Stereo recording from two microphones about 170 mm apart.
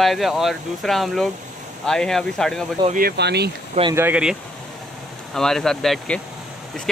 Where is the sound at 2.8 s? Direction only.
50° right (ahead or behind).